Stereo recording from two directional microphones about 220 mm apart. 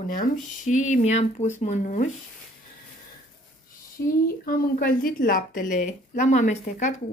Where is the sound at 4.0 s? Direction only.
45° left (ahead or behind).